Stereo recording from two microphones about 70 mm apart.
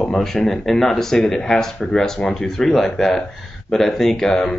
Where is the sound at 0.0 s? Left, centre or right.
Centre.